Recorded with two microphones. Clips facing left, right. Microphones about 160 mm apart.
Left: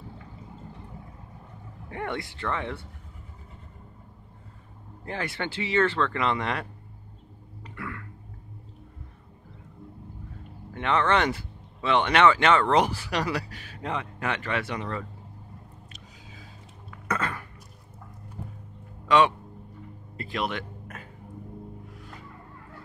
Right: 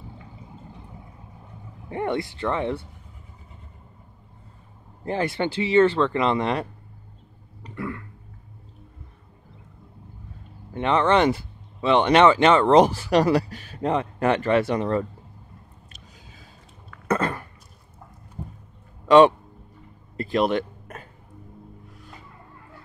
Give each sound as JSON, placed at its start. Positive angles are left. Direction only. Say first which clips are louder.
{"t": 1.9, "sound": "speech", "louder": "right 7 dB", "side_deg": -25}
{"t": 5.0, "sound": "speech", "louder": "right 8 dB", "side_deg": -30}
{"t": 7.6, "sound": "throat clearing", "louder": "right 6 dB", "side_deg": -25}
{"t": 10.7, "sound": "speech", "louder": "right 4 dB", "side_deg": -25}
{"t": 13.0, "sound": "speech", "louder": "right 10 dB", "side_deg": -45}
{"t": 17.1, "sound": "cough", "louder": "right 6 dB", "side_deg": -35}
{"t": 18.4, "sound": "music", "louder": "right 4 dB", "side_deg": -20}
{"t": 19.0, "sound": "a man's voice", "louder": "right 7 dB", "side_deg": -40}
{"t": 20.2, "sound": "a sound", "louder": "right 9 dB", "side_deg": -40}